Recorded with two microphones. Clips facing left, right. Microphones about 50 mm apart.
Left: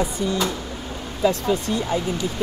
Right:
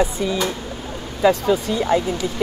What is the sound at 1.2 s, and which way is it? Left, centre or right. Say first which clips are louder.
Speech: right 4 dB; right.